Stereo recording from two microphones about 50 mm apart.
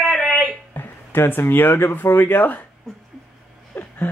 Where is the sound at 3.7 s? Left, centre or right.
Left.